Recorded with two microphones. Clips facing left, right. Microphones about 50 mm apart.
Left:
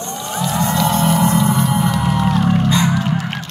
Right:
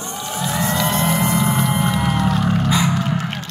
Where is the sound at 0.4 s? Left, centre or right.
Centre.